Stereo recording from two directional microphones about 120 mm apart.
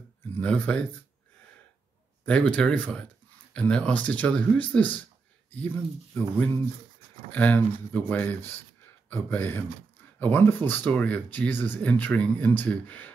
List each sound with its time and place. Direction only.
0.3 s speech: 10° left (ahead or behind)
2.2 s speech: 10° left (ahead or behind)
6.1 s speech: 15° left (ahead or behind)